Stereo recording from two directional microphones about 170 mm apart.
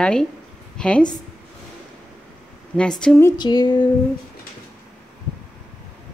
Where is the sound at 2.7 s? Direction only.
5° left (ahead or behind).